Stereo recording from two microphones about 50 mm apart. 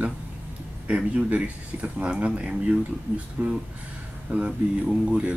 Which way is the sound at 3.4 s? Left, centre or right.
Right.